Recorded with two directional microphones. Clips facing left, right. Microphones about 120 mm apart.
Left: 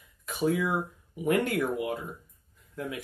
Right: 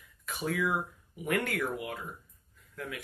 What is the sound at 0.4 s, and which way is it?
Speech, 25° left (ahead or behind).